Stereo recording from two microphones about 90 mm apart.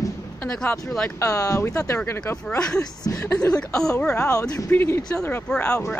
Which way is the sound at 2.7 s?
35° left (ahead or behind).